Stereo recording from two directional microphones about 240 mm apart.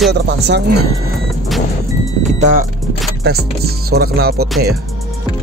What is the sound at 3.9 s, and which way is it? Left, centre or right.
Speech, right.